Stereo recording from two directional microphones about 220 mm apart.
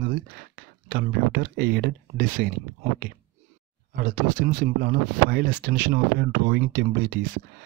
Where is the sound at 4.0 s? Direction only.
40° right (ahead or behind).